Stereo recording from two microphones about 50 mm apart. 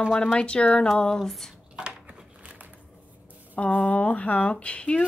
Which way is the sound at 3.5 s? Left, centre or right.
Left.